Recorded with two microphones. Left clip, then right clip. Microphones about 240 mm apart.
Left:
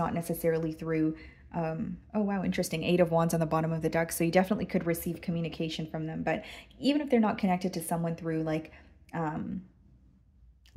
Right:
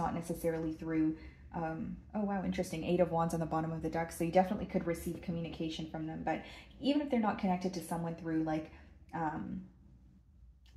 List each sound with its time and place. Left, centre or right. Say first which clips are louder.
0.0 s a woman's voice: left 5 dB; left